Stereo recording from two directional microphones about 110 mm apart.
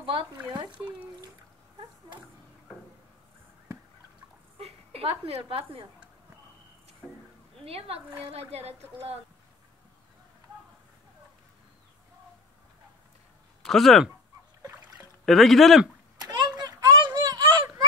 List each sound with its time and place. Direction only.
0.5 s speech: 45° right (ahead or behind)
0.7 s speech: 10° right (ahead or behind)
4.6 s a woman's voice: 65° right (ahead or behind)
7.0 s a sound: centre (ahead or behind)
7.6 s a woman's voice: 65° right (ahead or behind)
13.6 s speech: centre (ahead or behind)
15.2 s speech: centre (ahead or behind)
16.3 s a sound: 40° right (ahead or behind)